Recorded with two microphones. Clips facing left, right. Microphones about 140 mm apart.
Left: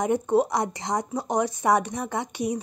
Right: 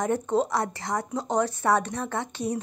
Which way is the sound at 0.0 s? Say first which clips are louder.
Left 3 dB; 10° left (ahead or behind).